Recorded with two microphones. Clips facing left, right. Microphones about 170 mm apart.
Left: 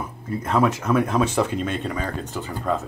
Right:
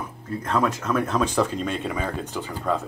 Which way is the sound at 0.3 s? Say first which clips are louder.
Left 3 dB; 10° left (ahead or behind).